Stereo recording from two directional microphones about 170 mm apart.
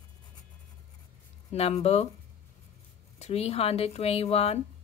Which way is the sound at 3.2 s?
35° left (ahead or behind).